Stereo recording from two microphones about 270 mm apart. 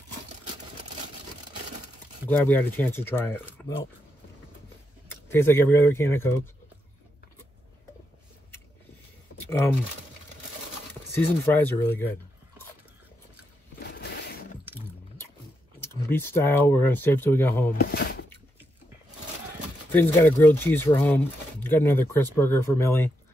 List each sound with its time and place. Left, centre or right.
2.2 s speech: centre
5.0 s speech: centre
9.5 s speech: centre
11.1 s speech: centre
13.8 s zipper: left
15.8 s speech: centre
19.9 s speech: centre